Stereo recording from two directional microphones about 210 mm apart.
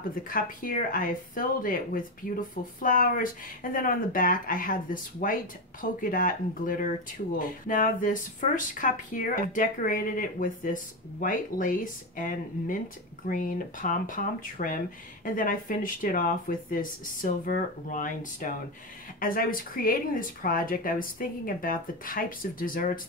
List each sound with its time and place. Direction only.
0.1 s speech: 40° left (ahead or behind)